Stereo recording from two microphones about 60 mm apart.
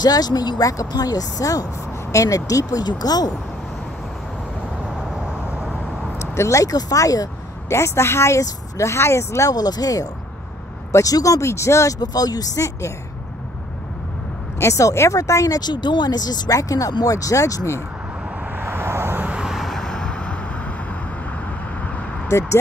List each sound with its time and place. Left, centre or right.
0.0 s speech: left
2.1 s speech: left
6.1 s speech: left
7.7 s speech: left
9.5 s speech: left
10.9 s speech: left
11.4 s speech: left
12.1 s speech: left
14.6 s speech: left
18.6 s vehicle: right
19.3 s vehicle: centre
19.6 s vehicle: centre
22.3 s speech: left